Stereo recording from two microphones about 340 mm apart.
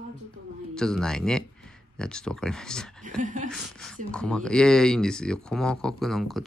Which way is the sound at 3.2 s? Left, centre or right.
Right.